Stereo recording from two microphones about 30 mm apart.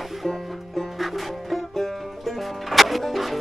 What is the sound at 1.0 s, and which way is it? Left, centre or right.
Music, centre.